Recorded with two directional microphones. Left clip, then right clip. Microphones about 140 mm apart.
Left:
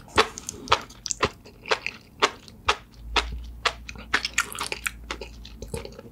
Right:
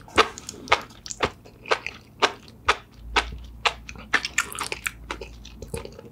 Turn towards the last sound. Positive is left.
turn(degrees=30)  # may be behind; listen again after turning